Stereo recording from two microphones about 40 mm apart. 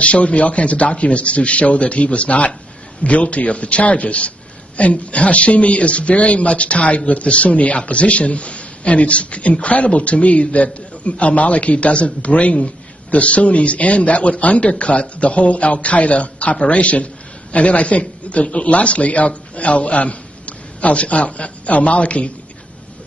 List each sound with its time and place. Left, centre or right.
0.0 s a man's voice: left